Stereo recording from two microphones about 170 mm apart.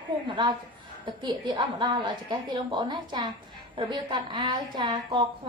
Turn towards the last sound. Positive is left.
turn(degrees=-25)  # may be behind; listen again after turning